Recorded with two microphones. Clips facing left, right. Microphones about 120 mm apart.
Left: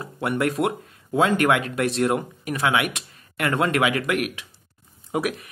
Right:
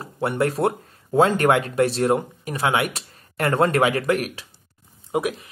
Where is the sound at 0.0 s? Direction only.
30° right (ahead or behind).